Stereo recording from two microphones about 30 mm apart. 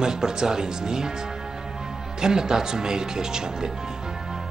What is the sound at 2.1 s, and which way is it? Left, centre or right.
Speech, right.